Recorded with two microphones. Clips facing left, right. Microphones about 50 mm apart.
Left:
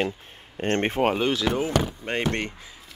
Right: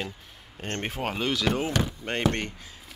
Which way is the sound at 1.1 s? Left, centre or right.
Centre.